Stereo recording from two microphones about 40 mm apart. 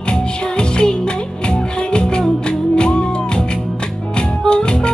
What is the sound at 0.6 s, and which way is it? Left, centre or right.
Music, left.